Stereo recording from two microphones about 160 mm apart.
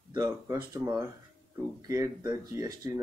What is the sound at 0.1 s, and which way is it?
Speech, 25° right (ahead or behind).